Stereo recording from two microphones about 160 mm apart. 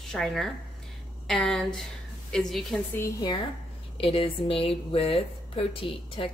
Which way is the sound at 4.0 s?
35° left (ahead or behind).